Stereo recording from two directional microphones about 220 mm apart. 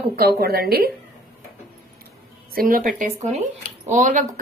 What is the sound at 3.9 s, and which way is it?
Speech, 35° right (ahead or behind).